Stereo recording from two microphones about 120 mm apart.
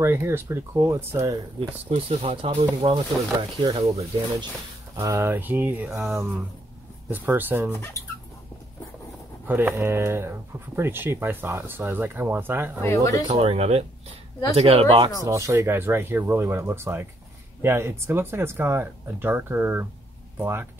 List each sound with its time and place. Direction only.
0.0 s speech: 20° right (ahead or behind)
1.9 s speech: 55° right (ahead or behind)
3.0 s speech: 40° right (ahead or behind)
3.7 s speech: 55° right (ahead or behind)
4.9 s speech: 25° right (ahead or behind)
7.1 s speech: 15° right (ahead or behind)
9.5 s speech: 15° right (ahead or behind)
12.8 s speech: 25° left (ahead or behind)
13.3 s speech: 55° right (ahead or behind)
15.2 s speech: 25° right (ahead or behind)